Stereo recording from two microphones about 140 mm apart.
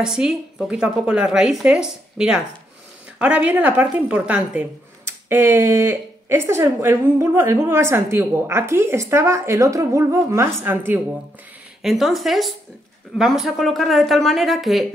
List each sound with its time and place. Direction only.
0.0 s a woman's voice: 5° right (ahead or behind)
11.8 s a woman's voice: centre (ahead or behind)